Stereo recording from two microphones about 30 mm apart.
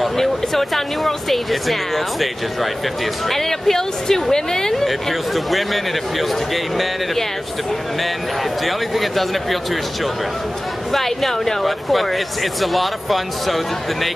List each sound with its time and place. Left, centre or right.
0.2 s speech: centre
3.3 s speech: centre
4.8 s speech: centre
8.6 s speech: centre
10.9 s speech: centre